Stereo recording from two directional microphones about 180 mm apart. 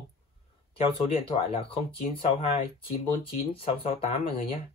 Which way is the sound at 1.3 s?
30° left (ahead or behind).